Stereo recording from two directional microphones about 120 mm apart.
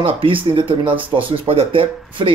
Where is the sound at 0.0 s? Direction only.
45° right (ahead or behind).